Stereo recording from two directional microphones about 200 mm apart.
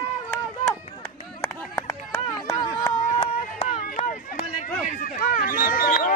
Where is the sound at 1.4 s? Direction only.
10° left (ahead or behind).